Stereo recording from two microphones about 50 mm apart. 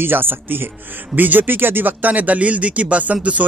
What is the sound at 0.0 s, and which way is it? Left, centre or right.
Speech, right.